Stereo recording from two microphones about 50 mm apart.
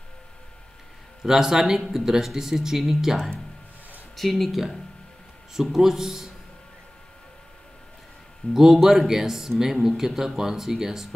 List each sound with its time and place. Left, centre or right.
1.2 s speech: centre
4.2 s speech: centre
8.4 s a man's voice: left
8.8 s speech: centre